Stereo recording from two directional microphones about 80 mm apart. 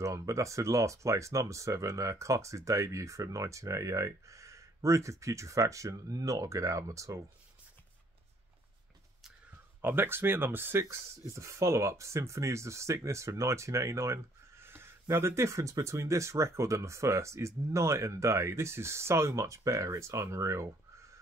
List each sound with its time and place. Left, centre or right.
0.0 s speech: right
9.8 s speech: right